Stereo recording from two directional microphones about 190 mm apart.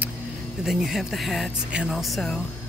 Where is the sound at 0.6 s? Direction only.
Centre (ahead or behind).